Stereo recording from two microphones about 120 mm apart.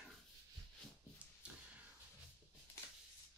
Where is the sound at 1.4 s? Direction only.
10° right (ahead or behind).